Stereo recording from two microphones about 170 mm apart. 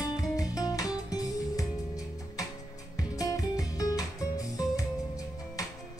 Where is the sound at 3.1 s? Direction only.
20° left (ahead or behind).